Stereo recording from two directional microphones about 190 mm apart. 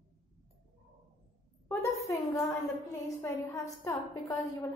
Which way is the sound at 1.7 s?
15° left (ahead or behind).